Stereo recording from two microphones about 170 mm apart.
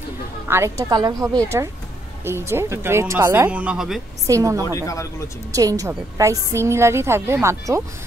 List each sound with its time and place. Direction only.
0.5 s a woman's voice: 15° right (ahead or behind)
4.3 s a woman's voice: 20° right (ahead or behind)
4.6 s speech: 20° left (ahead or behind)
5.5 s a woman's voice: 20° right (ahead or behind)